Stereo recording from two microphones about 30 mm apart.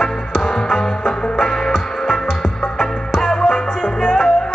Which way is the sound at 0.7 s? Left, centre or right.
Centre.